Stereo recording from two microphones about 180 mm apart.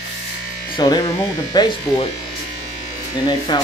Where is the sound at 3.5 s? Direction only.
25° left (ahead or behind).